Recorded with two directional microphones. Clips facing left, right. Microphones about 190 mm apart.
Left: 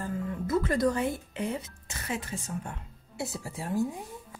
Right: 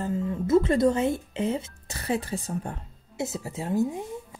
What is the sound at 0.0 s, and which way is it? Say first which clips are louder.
Speech: right 5 dB; 25° right (ahead or behind).